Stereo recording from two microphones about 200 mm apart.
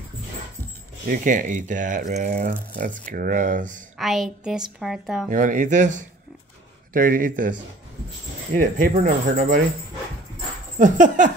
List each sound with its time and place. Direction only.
1.0 s speech: 45° right (ahead or behind)
4.0 s a woman's voice: centre (ahead or behind)
5.3 s speech: 40° right (ahead or behind)
8.5 s speech: 45° right (ahead or behind)
10.8 s speech: 40° right (ahead or behind)